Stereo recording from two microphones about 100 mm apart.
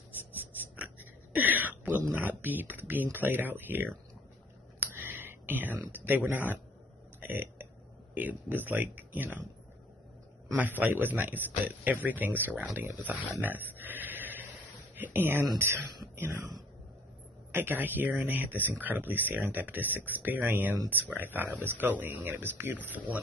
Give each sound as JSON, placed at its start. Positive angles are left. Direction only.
{"t": 0.7, "sound": "speech", "side_deg": -15}
{"t": 4.7, "sound": "a sound", "side_deg": -20}
{"t": 7.2, "sound": "burping", "side_deg": -15}
{"t": 8.1, "sound": "speech", "side_deg": -15}
{"t": 10.5, "sound": "speech", "side_deg": -15}
{"t": 13.4, "sound": "a sound", "side_deg": -15}
{"t": 15.0, "sound": "speech", "side_deg": -20}
{"t": 17.5, "sound": "speech", "side_deg": -20}